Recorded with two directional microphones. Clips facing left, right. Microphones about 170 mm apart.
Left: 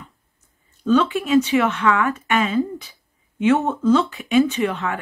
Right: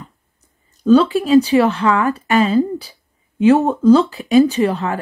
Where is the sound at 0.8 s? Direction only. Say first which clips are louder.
Right 6 dB; 35° right (ahead or behind).